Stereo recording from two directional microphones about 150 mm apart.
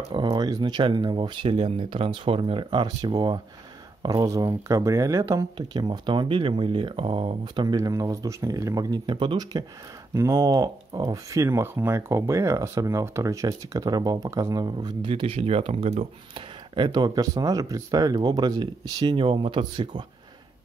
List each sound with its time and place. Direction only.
0.1 s speech: 30° right (ahead or behind)